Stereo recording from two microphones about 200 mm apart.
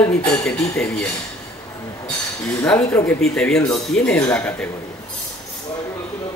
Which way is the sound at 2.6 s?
10° left (ahead or behind).